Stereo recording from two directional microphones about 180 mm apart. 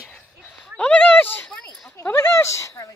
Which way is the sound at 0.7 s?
5° left (ahead or behind).